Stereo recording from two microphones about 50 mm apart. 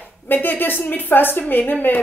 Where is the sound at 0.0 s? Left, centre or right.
Left.